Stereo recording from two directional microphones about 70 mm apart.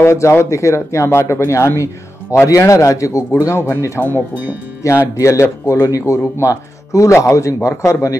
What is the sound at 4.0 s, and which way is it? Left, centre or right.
Speech, left.